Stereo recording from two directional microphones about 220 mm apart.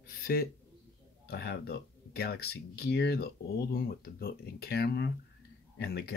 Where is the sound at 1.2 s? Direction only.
45° left (ahead or behind).